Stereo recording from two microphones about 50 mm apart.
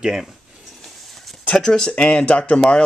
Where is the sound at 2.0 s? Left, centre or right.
Left.